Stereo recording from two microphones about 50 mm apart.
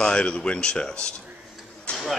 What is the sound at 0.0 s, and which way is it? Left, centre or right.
Speech, centre.